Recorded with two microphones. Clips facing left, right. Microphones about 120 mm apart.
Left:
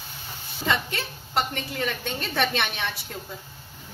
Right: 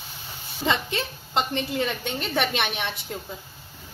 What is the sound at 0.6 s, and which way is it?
A woman's voice, 20° right (ahead or behind).